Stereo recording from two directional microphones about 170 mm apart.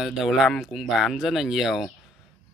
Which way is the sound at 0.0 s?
Centre (ahead or behind).